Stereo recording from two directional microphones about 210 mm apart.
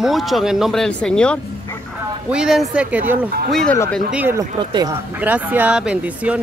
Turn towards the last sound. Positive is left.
turn(degrees=-5)  # may be behind; listen again after turning